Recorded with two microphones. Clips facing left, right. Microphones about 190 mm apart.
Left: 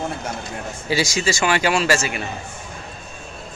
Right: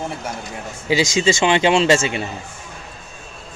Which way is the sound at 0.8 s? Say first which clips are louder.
Right 4 dB; 20° right (ahead or behind).